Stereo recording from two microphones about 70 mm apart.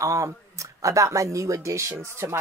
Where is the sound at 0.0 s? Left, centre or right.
Right.